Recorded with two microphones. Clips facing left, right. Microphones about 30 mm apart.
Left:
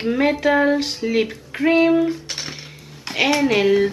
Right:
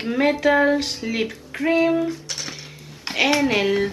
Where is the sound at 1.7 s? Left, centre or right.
Centre.